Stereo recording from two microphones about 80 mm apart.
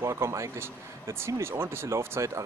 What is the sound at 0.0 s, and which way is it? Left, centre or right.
Speech, right.